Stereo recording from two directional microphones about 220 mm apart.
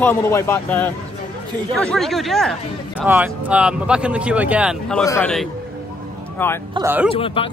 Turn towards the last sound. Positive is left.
turn(degrees=25)  # may be behind; listen again after turning